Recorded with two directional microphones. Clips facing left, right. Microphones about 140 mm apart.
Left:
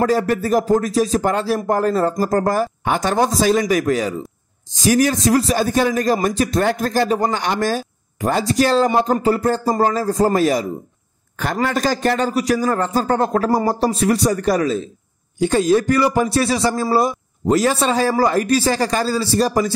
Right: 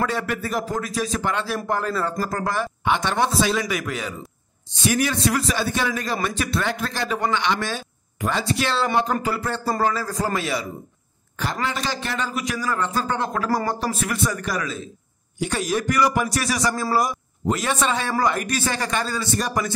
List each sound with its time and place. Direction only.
0.0 s speech: 40° left (ahead or behind)